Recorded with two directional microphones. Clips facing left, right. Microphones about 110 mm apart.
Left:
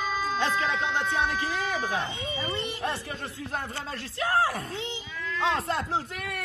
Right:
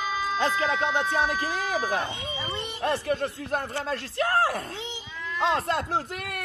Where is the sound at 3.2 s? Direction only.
50° right (ahead or behind).